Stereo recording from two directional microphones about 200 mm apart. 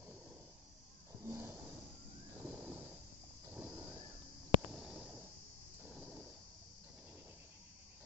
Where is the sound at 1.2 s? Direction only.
10° right (ahead or behind).